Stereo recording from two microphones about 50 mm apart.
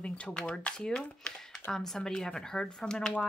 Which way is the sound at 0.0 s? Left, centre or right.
Left.